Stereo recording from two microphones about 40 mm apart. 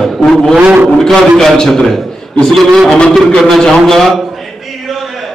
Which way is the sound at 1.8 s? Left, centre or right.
Centre.